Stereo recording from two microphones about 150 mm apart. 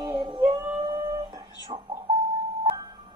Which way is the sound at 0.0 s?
25° right (ahead or behind).